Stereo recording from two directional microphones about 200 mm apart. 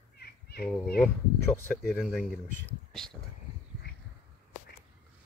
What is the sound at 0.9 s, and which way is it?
Speech, 5° left (ahead or behind).